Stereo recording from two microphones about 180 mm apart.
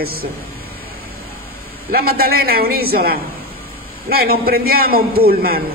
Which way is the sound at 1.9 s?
55° right (ahead or behind).